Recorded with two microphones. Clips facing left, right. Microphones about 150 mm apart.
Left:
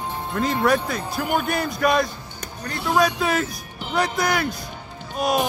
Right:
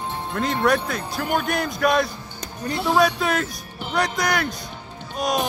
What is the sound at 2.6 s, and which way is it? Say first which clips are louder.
Speech: right 4 dB; 15° right (ahead or behind).